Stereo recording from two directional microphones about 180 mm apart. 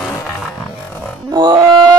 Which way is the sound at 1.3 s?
25° right (ahead or behind).